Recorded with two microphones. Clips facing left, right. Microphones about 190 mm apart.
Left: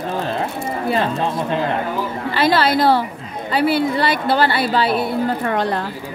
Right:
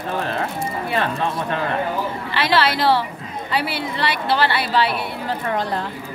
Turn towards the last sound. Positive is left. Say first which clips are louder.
# left 3 dB
turn(degrees=40)  # may be behind; listen again after turning